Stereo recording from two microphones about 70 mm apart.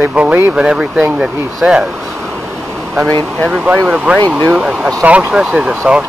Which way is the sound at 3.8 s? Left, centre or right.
Centre.